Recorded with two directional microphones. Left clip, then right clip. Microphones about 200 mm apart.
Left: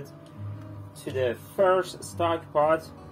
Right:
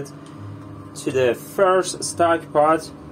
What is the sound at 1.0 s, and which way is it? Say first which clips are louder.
Speech: right 9 dB; 20° right (ahead or behind).